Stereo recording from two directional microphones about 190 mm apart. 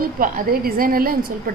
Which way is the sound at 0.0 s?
50° right (ahead or behind).